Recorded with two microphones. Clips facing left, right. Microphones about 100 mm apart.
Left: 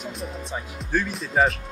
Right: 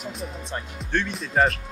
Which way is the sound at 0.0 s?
Centre (ahead or behind).